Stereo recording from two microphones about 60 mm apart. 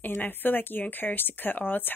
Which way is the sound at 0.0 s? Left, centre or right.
Left.